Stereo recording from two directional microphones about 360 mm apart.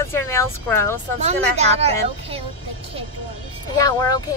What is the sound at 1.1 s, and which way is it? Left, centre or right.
Speech, centre.